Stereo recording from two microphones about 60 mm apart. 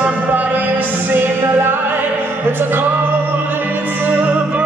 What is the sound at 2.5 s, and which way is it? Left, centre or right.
Music, right.